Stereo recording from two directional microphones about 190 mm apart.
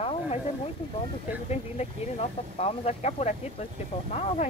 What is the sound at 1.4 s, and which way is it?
Speech, 35° left (ahead or behind).